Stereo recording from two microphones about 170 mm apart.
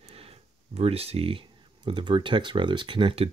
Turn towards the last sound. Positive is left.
turn(degrees=-30)  # may be behind; listen again after turning